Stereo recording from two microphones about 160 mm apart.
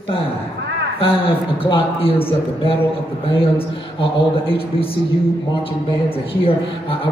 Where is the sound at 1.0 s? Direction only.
35° left (ahead or behind).